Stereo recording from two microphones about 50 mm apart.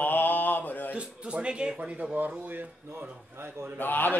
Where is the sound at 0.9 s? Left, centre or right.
Right.